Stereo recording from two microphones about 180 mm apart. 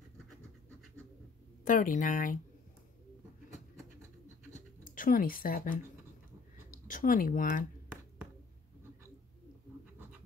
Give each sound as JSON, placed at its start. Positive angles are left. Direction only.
{"t": 1.7, "sound": "speech", "side_deg": 45}
{"t": 4.6, "sound": "a sound", "side_deg": 50}
{"t": 6.7, "sound": "speech", "side_deg": 50}